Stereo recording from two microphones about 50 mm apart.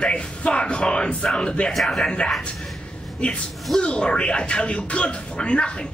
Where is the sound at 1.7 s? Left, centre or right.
Centre.